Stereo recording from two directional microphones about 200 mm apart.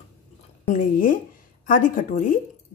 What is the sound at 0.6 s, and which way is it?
Speech, 40° left (ahead or behind).